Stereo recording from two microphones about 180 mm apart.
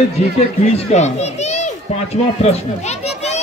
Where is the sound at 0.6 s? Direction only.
40° left (ahead or behind).